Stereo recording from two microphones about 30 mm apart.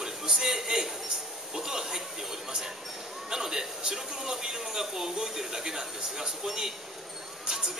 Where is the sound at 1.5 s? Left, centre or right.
Centre.